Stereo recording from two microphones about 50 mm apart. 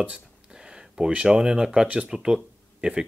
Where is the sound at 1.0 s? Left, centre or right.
Centre.